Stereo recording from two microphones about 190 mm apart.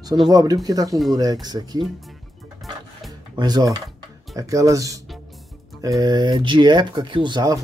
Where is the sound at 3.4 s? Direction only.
20° right (ahead or behind).